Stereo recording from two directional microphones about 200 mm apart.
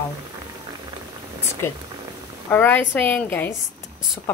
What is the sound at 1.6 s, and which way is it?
A woman's voice, 10° left (ahead or behind).